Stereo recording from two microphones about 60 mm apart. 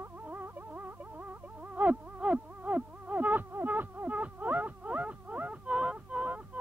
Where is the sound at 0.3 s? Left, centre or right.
Right.